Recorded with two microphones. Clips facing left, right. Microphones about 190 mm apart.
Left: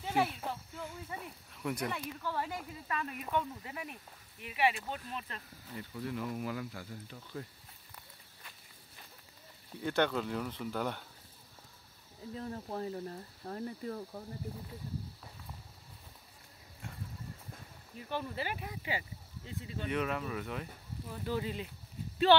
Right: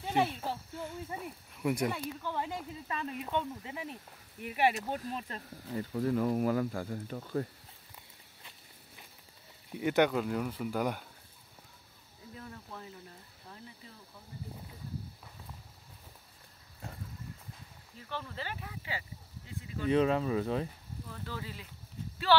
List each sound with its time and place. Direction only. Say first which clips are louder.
0.8 s speech: right 4 dB; 5° right (ahead or behind); by 4.0 s 25° right (ahead or behind)
4.4 s speech: right 2 dB; 45° right (ahead or behind)
9.7 s speech: right 4 dB; 15° right (ahead or behind)
12.4 s speech: left 8 dB; 35° left (ahead or behind); by 14.2 s 55° left (ahead or behind)
16.8 s a sound: right 2 dB; 35° right (ahead or behind)
17.9 s speech: left 3 dB; 15° left (ahead or behind)
19.9 s speech: right 8 dB; 30° right (ahead or behind)
21.1 s speech: left 7 dB; 15° left (ahead or behind)